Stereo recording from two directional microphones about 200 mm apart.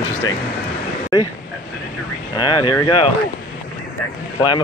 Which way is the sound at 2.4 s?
20° left (ahead or behind).